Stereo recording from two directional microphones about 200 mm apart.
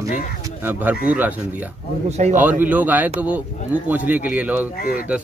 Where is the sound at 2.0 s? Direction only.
35° right (ahead or behind).